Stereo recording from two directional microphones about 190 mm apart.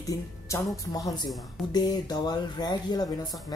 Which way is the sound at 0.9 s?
20° left (ahead or behind).